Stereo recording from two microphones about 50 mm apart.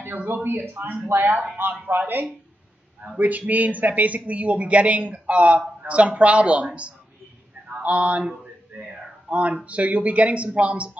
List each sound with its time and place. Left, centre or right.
0.0 s speech: right
9.3 s speech: right